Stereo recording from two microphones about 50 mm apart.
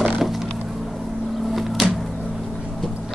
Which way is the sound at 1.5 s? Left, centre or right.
Centre.